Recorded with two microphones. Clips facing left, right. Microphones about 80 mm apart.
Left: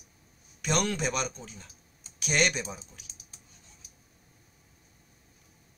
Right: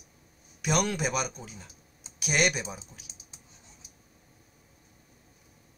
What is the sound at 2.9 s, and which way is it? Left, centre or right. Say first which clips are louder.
Computer keyboard: right 2 dB; right.